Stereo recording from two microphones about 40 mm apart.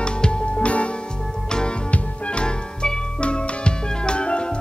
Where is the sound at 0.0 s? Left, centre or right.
Left.